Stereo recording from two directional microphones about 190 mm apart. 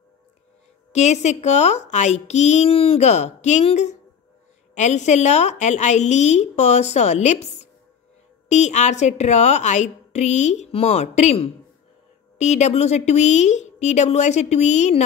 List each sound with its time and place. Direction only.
0.9 s a woman's voice: 35° left (ahead or behind)